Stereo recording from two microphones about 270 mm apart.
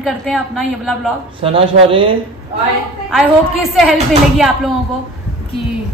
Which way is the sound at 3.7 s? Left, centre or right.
Centre.